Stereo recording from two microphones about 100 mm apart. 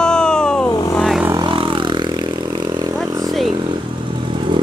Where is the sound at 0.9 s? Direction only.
Centre (ahead or behind).